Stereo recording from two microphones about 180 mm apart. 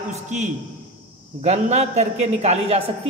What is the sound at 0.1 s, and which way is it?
A man's voice, 40° right (ahead or behind).